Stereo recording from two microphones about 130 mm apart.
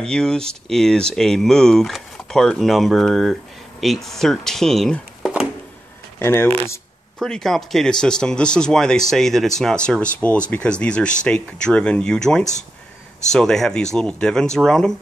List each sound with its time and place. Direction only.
0.0 s speech: 5° left (ahead or behind)
6.1 s speech: 15° left (ahead or behind)
7.2 s speech: 5° left (ahead or behind)